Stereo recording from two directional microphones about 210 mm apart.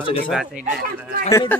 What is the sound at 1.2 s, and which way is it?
Speech, 15° left (ahead or behind).